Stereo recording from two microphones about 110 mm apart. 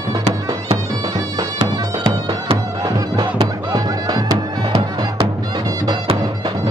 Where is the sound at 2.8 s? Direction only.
40° right (ahead or behind).